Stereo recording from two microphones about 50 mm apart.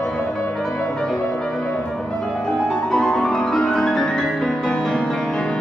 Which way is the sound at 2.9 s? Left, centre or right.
Centre.